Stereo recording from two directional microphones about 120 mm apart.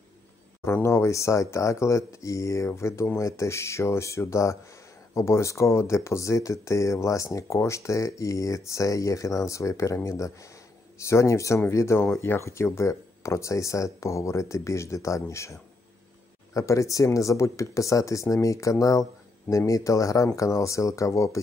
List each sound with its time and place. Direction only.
0.7 s speech: 20° left (ahead or behind)